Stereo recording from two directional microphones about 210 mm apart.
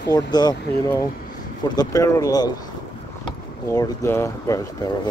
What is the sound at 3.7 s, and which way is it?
Speech, 15° left (ahead or behind).